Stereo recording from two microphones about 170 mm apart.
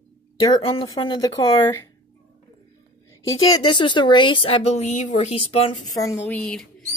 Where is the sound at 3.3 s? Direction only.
25° left (ahead or behind).